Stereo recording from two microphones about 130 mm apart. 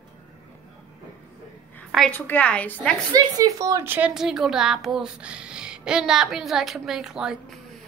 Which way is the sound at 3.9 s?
5° right (ahead or behind).